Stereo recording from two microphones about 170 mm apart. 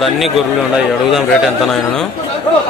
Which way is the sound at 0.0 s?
Centre (ahead or behind).